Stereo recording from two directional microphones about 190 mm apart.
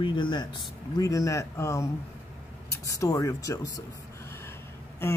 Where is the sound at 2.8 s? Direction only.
15° left (ahead or behind).